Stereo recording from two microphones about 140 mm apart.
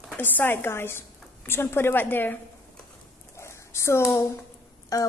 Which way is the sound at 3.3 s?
20° left (ahead or behind).